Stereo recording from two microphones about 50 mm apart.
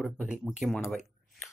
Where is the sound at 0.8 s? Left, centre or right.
Centre.